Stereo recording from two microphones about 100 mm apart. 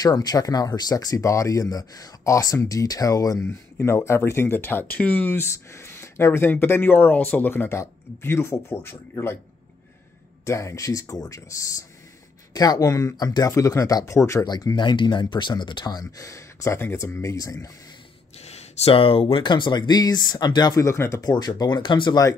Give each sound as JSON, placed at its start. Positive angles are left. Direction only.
{"t": 0.0, "sound": "speech", "side_deg": 40}
{"t": 3.4, "sound": "speech", "side_deg": 25}
{"t": 10.4, "sound": "speech", "side_deg": 30}
{"t": 14.4, "sound": "speech", "side_deg": 40}
{"t": 14.9, "sound": "speech", "side_deg": 50}
{"t": 18.4, "sound": "speech", "side_deg": 90}
{"t": 20.7, "sound": "speech", "side_deg": 30}
{"t": 21.2, "sound": "speech", "side_deg": 40}